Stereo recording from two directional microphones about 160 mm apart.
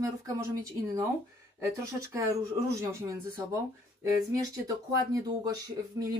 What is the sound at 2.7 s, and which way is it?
Speech, 15° right (ahead or behind).